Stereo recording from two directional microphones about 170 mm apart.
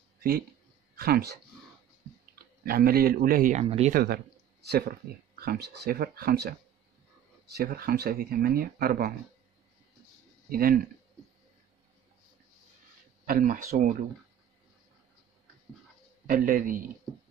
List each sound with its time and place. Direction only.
0.9 s speech: 65° right (ahead or behind)
3.6 s speech: 35° right (ahead or behind)
3.9 s speech: 65° right (ahead or behind)
7.5 s speech: 65° right (ahead or behind)
10.5 s speech: 60° right (ahead or behind)
13.2 s speech: 55° right (ahead or behind)
16.3 s speech: 55° right (ahead or behind)